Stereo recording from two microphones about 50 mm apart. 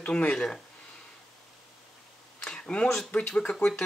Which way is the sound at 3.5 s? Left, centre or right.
Centre.